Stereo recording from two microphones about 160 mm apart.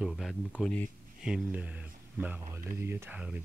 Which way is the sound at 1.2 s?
5° right (ahead or behind).